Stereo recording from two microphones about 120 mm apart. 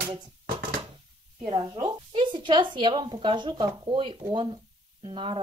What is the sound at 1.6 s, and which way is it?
A woman's voice, 35° right (ahead or behind).